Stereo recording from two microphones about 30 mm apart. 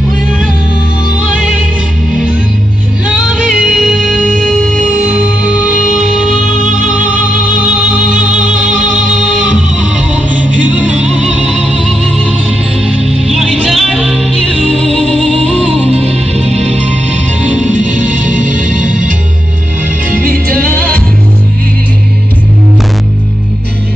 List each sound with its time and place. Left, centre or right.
3.1 s music: centre
4.9 s music: right
5.9 s music: centre
7.0 s music: right
7.8 s music: right
9.5 s music: right
10.3 s music: right
11.4 s music: centre
13.7 s music: centre
14.8 s music: left
17.4 s music: right
17.6 s music: right
20.6 s music: left